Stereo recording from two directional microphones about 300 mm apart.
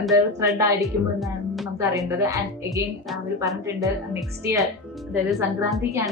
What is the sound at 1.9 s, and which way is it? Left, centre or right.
A woman's voice, centre.